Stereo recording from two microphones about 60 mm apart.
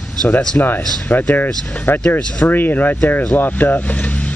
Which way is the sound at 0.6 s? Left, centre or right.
Left.